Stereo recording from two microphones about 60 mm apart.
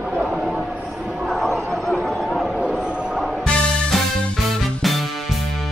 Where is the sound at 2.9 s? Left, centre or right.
Centre.